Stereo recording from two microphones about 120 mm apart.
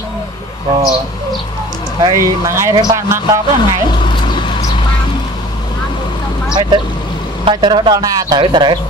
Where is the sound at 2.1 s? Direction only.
25° right (ahead or behind).